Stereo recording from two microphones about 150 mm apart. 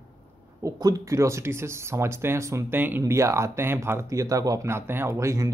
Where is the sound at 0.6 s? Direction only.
25° right (ahead or behind).